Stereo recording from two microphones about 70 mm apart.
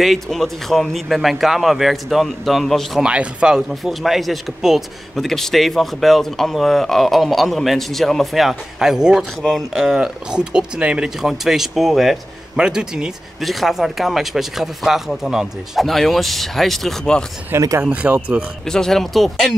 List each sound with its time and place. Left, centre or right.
0.0 s speech: centre
3.0 s speech: centre
17.6 s speech: right
17.8 s speech: centre
18.7 s speech: centre